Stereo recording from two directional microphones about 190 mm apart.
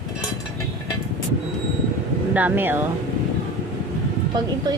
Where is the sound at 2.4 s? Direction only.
10° right (ahead or behind).